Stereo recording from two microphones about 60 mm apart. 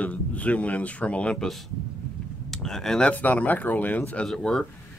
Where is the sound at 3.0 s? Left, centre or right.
Left.